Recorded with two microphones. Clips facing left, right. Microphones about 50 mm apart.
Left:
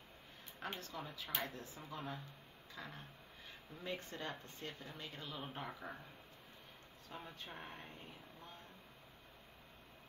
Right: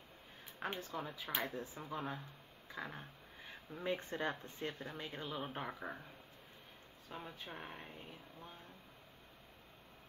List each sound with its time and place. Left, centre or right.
0.6 s speech: centre
7.1 s speech: centre